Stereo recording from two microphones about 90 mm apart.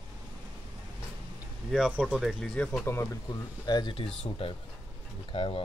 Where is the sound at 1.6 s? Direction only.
5° right (ahead or behind).